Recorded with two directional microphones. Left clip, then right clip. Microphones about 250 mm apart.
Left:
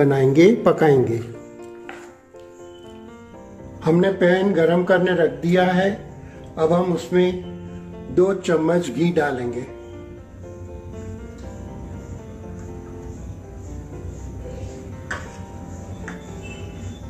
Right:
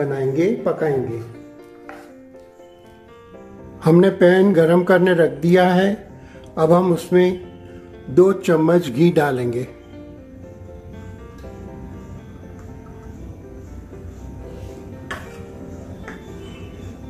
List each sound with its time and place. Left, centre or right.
0.0 s speech: left
3.8 s speech: right